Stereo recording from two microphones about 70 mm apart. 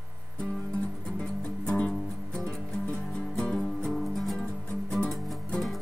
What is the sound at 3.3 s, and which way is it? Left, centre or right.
Music, centre.